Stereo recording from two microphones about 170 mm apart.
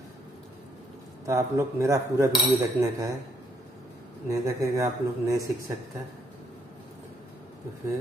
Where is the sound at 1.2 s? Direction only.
20° right (ahead or behind).